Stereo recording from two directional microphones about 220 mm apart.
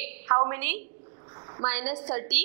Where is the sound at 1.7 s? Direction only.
10° right (ahead or behind).